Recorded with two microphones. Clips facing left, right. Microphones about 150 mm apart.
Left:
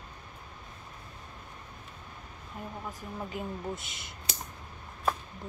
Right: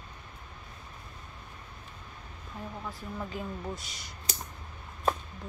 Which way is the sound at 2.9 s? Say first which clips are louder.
Even; 20° left (ahead or behind).